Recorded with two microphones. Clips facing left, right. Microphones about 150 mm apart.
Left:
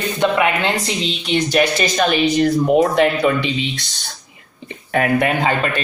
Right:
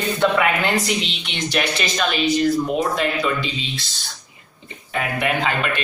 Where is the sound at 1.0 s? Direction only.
40° left (ahead or behind); by 3.4 s 60° left (ahead or behind).